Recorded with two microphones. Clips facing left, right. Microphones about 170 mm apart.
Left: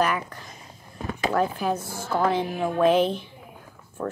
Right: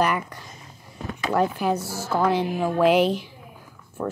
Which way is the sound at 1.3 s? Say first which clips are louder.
Right 3 dB; 10° right (ahead or behind).